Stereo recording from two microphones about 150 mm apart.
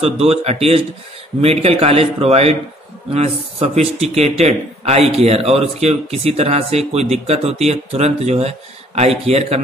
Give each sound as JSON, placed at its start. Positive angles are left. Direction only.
{"t": 0.2, "sound": "a man's voice", "side_deg": -45}